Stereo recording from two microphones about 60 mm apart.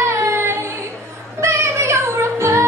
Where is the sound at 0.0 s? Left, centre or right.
Right.